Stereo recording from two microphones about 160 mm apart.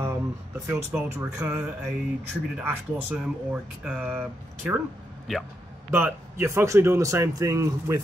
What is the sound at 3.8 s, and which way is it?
Speech, 10° right (ahead or behind).